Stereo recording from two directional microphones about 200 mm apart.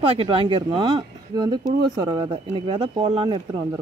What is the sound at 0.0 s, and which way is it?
Speech, 30° right (ahead or behind).